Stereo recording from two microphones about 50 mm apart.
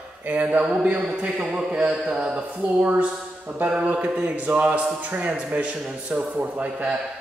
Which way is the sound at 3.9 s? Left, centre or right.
Right.